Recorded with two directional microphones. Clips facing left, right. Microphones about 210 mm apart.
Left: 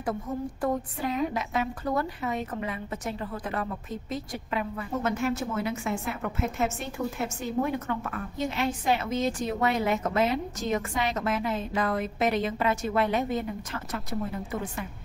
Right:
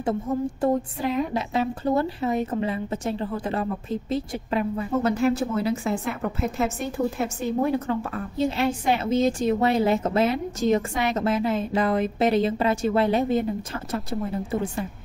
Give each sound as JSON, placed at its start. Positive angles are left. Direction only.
{"t": 0.0, "sound": "a woman's voice", "side_deg": -25}